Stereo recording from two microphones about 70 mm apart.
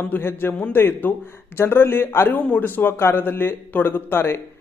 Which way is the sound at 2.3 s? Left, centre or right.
Left.